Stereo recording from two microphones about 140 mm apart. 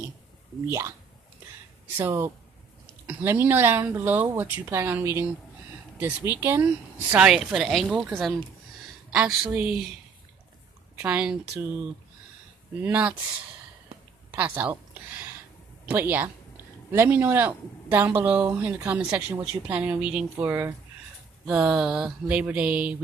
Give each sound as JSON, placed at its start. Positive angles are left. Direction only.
{"t": 0.7, "sound": "speech", "side_deg": -20}
{"t": 2.0, "sound": "speech", "side_deg": -15}
{"t": 11.0, "sound": "speech", "side_deg": -10}
{"t": 12.8, "sound": "speech", "side_deg": -10}
{"t": 14.3, "sound": "speech", "side_deg": -15}
{"t": 15.9, "sound": "speech", "side_deg": -15}
{"t": 21.5, "sound": "speech", "side_deg": -5}